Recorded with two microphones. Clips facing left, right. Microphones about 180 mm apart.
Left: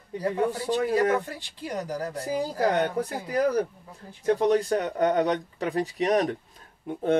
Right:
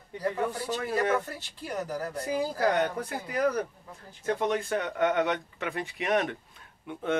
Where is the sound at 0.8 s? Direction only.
15° left (ahead or behind).